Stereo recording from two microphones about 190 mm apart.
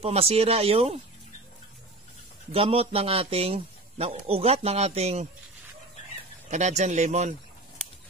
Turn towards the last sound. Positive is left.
turn(degrees=-35)  # may be behind; listen again after turning